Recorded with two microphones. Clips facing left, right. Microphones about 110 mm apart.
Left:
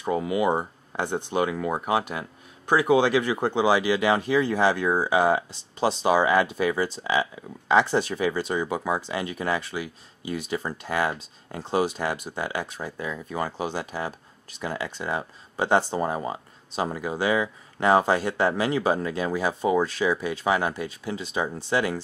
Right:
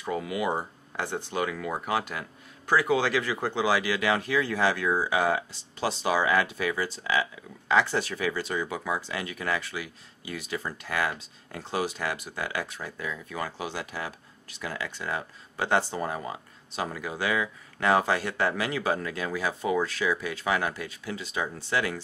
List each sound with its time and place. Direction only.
0.0 s speech: 25° left (ahead or behind)